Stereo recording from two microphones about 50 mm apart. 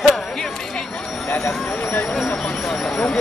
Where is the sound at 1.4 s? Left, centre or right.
Left.